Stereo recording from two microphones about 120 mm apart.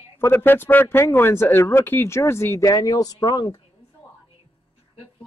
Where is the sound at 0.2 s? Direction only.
15° left (ahead or behind).